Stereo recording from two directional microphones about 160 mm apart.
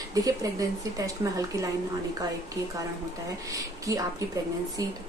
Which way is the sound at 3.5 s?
20° right (ahead or behind).